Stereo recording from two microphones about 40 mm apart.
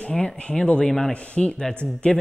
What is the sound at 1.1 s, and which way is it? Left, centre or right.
Speech, left.